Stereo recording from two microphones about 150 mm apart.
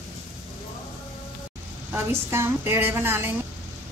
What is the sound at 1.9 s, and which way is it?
A woman's voice, 15° right (ahead or behind).